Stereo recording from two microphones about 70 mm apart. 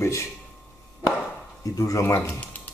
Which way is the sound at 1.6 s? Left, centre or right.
Left.